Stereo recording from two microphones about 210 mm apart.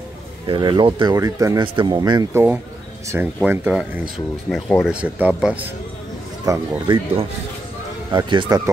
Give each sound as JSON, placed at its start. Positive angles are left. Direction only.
{"t": 0.5, "sound": "speech", "side_deg": -20}
{"t": 6.4, "sound": "speech", "side_deg": -15}
{"t": 8.1, "sound": "speech", "side_deg": -20}